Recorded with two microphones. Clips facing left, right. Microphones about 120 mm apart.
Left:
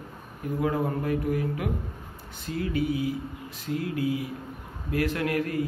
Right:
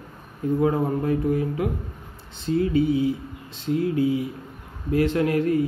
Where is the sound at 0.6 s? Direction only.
25° right (ahead or behind).